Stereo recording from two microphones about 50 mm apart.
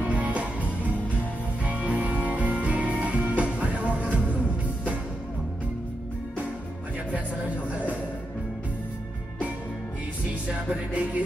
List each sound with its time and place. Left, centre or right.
0.0 s music: right
10.9 s music: right